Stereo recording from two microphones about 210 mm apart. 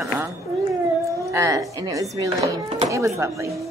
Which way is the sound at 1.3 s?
15° right (ahead or behind).